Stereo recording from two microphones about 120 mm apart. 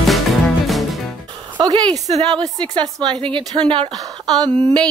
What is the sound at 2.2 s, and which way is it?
A woman's voice, 40° right (ahead or behind).